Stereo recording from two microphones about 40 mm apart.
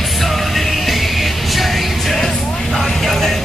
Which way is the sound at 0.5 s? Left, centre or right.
Centre.